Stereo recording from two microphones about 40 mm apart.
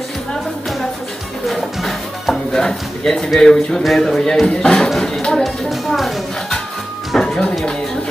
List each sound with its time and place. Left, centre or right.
1.5 s music: centre
2.5 s speech: centre
5.7 s music: centre
7.2 s music: centre